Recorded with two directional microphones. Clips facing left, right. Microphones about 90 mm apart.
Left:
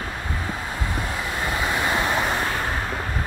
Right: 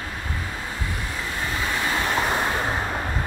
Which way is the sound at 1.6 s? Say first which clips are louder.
Left 2 dB; 20° left (ahead or behind).